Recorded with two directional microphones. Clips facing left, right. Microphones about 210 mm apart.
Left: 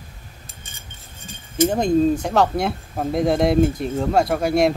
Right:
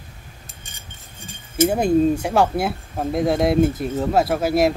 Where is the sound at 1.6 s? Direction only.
10° right (ahead or behind).